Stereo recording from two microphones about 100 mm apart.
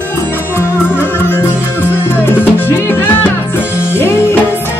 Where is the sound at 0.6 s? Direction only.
20° left (ahead or behind).